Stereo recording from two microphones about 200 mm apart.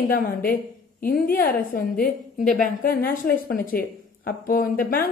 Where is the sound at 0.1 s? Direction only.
45° left (ahead or behind).